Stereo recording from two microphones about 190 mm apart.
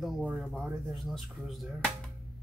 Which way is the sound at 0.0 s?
5° right (ahead or behind).